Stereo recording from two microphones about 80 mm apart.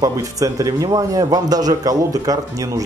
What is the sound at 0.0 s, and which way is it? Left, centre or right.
A man's voice, right.